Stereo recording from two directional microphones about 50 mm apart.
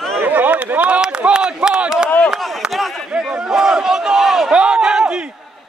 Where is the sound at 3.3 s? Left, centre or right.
Centre.